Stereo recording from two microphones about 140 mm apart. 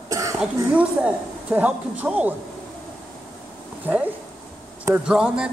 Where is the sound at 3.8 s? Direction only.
10° right (ahead or behind).